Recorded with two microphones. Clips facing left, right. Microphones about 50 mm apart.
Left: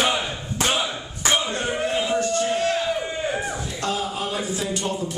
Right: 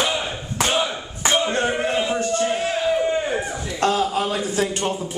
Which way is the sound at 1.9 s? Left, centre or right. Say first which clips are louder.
Right 1 dB; centre.